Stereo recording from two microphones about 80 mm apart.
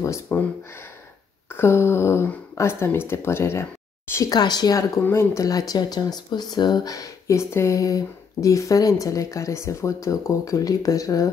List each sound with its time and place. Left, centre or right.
0.3 s speech: left
1.5 s speech: left
4.3 s speech: left
5.1 s speech: left